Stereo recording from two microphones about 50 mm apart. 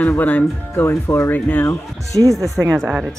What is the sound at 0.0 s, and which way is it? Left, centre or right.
Speech, left.